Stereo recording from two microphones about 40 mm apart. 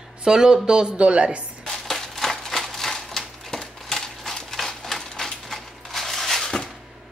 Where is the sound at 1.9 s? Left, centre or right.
Centre.